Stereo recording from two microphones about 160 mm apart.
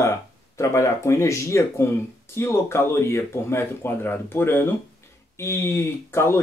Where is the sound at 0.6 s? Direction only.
20° left (ahead or behind).